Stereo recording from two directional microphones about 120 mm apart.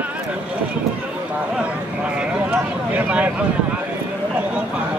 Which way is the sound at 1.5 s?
10° right (ahead or behind).